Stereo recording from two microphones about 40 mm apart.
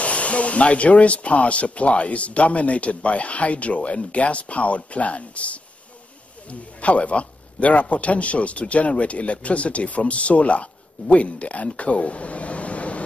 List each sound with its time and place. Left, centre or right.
0.0 s speech: left
6.8 s speech: left